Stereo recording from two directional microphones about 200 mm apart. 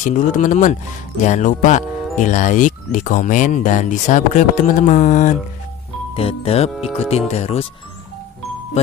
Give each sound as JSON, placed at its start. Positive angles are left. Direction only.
{"t": 0.0, "sound": "speech", "side_deg": 40}